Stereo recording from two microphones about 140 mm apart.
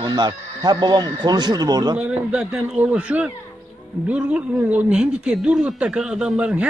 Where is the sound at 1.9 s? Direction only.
10° right (ahead or behind).